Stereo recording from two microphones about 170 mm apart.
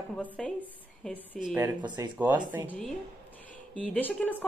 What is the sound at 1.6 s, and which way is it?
Speech, 25° right (ahead or behind).